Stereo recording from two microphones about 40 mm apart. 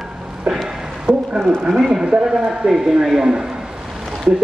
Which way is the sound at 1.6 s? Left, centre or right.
Centre.